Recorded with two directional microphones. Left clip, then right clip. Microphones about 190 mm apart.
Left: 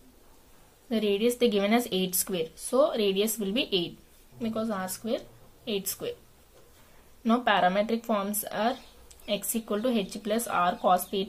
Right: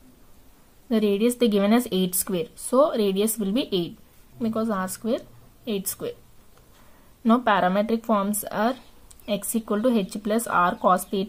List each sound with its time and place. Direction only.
0.8 s speech: 35° right (ahead or behind)
7.2 s speech: 35° right (ahead or behind)